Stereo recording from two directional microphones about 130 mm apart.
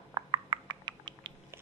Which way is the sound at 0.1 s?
35° right (ahead or behind).